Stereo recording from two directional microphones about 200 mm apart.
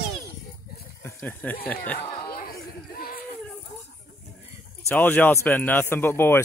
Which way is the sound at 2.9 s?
45° left (ahead or behind).